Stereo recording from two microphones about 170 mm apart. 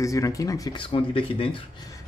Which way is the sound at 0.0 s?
20° left (ahead or behind).